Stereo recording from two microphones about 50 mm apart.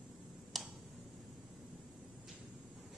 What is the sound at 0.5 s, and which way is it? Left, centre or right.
Tick-tock, centre.